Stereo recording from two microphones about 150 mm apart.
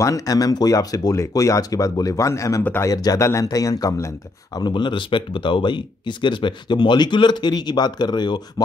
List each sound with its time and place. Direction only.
0.0 s speech: 20° left (ahead or behind)